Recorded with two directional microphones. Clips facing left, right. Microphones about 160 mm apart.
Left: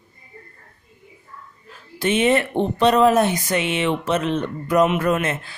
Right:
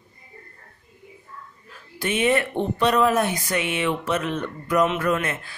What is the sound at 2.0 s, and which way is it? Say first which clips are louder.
Speech: left 3 dB; 25° left (ahead or behind).